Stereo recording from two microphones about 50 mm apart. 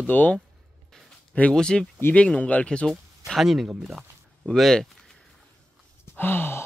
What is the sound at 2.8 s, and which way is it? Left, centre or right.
Speech, centre.